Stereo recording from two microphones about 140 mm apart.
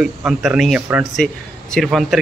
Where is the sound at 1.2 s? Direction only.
10° left (ahead or behind).